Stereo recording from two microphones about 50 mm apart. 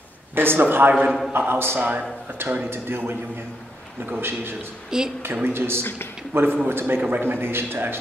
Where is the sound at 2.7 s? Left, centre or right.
Right.